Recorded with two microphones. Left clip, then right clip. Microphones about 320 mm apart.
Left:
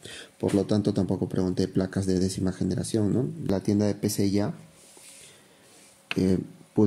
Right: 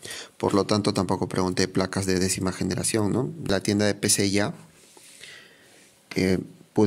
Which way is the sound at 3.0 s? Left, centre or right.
Right.